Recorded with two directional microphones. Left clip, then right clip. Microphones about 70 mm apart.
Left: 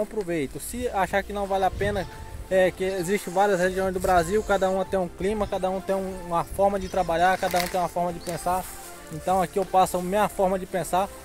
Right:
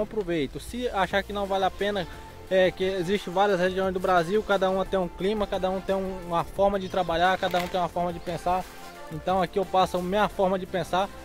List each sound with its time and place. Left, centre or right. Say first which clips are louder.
0.3 s speech: even; centre
1.3 s speech: left 1 dB; left
7.9 s speech: left 1 dB; centre
9.2 s speech: left 2 dB; centre